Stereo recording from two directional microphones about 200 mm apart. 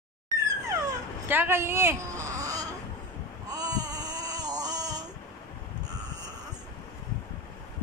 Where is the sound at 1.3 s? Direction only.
10° right (ahead or behind).